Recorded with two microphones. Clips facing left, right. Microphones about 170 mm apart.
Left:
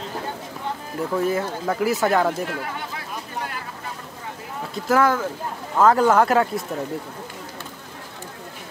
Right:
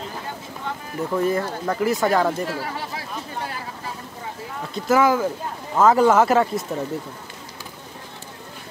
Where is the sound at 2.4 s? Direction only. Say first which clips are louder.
Right 1 dB; 35° right (ahead or behind).